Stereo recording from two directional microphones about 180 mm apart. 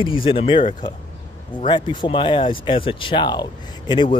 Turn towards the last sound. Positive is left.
turn(degrees=25)  # may be behind; listen again after turning